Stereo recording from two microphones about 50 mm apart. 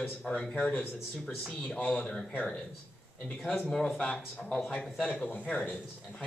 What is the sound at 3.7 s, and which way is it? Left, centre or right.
Speech, centre.